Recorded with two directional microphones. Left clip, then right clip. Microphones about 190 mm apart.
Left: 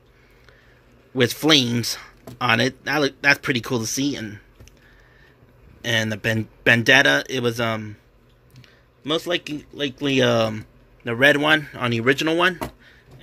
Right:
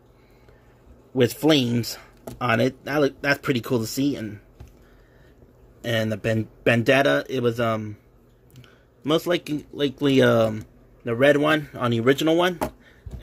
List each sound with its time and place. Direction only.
1.1 s a man's voice: 5° right (ahead or behind)
5.8 s a man's voice: 5° right (ahead or behind)
9.0 s a man's voice: 30° right (ahead or behind); by 12.9 s 10° right (ahead or behind)